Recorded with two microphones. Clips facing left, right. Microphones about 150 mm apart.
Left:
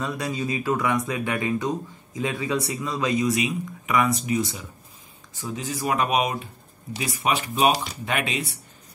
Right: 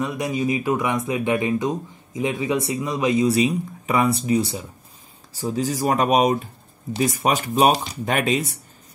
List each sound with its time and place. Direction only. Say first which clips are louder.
0.0 s speech: right 4 dB; 15° right (ahead or behind); by 8.5 s 40° right (ahead or behind)